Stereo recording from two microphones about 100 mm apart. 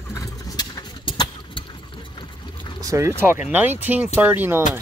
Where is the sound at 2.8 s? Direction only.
35° right (ahead or behind).